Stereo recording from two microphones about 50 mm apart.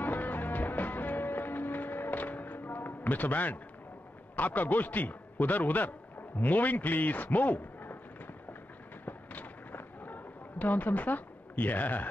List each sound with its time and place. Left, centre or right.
0.0 s music: left
4.4 s a man's voice: left
9.0 s artillery fire: left